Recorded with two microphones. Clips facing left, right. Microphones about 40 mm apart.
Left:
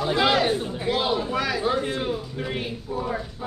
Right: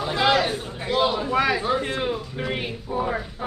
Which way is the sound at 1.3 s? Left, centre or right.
Centre.